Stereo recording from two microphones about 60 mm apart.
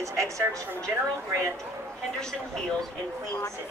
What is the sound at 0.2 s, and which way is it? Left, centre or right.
A woman's voice, right.